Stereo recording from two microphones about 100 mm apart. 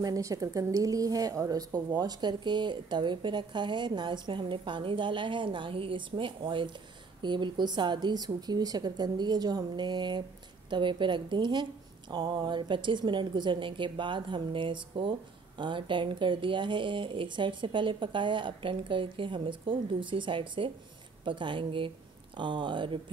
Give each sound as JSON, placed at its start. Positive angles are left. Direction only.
{"t": 0.0, "sound": "a woman's voice", "side_deg": -35}